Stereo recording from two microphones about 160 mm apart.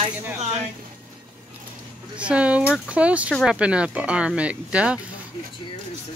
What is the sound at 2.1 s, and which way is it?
Speech, 5° right (ahead or behind).